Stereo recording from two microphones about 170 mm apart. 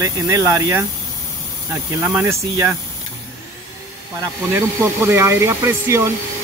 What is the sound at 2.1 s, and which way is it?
Speech, 15° right (ahead or behind).